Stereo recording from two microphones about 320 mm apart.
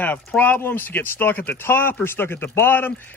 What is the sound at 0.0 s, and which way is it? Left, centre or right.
Speech, centre.